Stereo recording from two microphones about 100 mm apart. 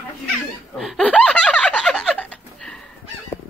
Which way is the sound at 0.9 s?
10° left (ahead or behind).